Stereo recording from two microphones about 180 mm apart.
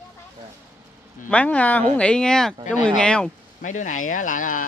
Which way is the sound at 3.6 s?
45° left (ahead or behind).